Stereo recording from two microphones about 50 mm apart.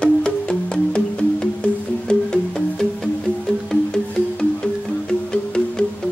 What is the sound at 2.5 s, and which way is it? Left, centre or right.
Music, centre.